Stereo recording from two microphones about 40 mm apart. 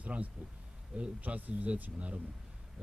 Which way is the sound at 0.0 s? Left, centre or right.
Right.